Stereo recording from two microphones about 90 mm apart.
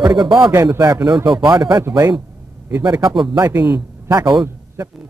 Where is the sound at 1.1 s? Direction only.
55° right (ahead or behind).